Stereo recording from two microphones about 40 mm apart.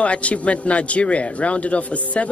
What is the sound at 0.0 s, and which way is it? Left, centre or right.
Speech, left.